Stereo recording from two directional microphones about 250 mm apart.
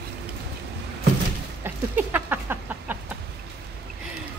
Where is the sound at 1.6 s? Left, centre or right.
Centre.